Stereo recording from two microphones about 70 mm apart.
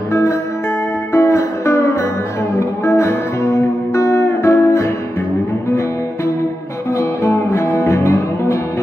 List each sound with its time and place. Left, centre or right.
0.1 s music: left
7.0 s music: left